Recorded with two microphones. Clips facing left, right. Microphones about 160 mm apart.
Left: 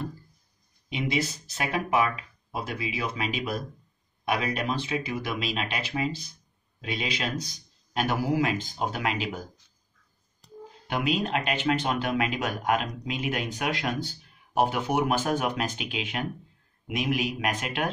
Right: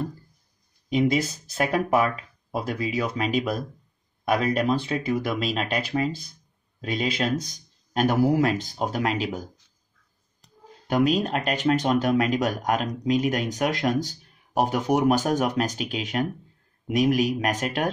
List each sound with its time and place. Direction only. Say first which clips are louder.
0.8 s speech: right 7 dB; 45° right (ahead or behind)
10.9 s speech: right 5 dB; 40° right (ahead or behind)